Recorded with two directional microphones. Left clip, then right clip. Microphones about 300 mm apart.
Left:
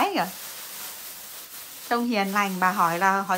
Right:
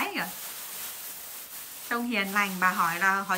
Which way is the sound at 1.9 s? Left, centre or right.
Centre.